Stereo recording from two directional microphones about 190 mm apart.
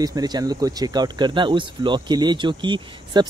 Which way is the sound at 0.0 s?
20° right (ahead or behind).